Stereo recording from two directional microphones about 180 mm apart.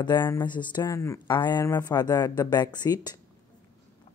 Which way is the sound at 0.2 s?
20° left (ahead or behind).